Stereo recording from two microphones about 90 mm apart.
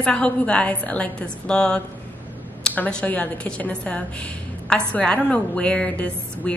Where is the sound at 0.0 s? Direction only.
10° left (ahead or behind).